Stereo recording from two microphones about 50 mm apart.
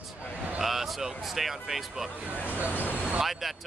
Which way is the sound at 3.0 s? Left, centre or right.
Centre.